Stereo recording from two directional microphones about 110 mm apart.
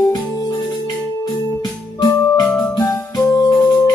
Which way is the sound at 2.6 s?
35° left (ahead or behind).